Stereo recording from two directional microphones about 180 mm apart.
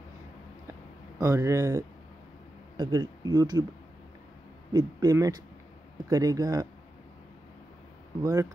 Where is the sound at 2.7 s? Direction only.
25° right (ahead or behind).